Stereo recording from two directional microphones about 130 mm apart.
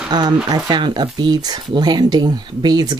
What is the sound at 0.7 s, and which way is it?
Speech, 35° right (ahead or behind).